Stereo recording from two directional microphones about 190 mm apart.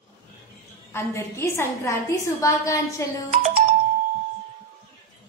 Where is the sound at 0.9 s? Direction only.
15° left (ahead or behind).